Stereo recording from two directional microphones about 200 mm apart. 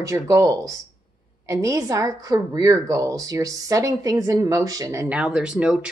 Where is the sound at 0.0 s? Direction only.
15° right (ahead or behind).